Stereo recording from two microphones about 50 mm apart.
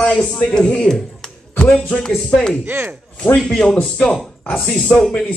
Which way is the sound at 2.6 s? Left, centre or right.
Right.